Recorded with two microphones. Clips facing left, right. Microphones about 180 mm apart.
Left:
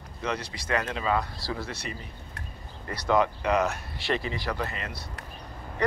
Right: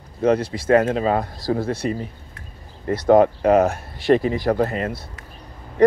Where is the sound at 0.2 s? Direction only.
50° right (ahead or behind).